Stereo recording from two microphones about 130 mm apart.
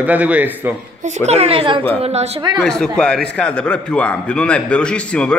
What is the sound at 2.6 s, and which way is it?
A man's voice, 5° left (ahead or behind).